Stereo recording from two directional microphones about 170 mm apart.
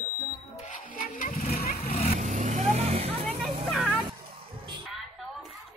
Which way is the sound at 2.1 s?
40° right (ahead or behind).